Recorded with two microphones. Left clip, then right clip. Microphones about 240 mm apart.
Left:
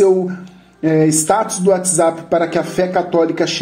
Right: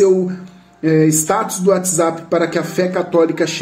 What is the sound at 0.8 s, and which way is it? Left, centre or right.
Speech, centre.